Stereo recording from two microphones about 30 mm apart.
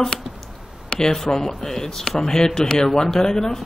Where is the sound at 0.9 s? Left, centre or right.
Left.